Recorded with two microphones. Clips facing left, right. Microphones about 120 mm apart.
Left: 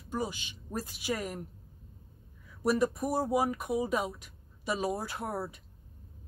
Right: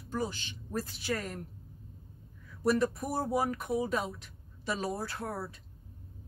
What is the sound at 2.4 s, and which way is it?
A woman's voice, 10° left (ahead or behind).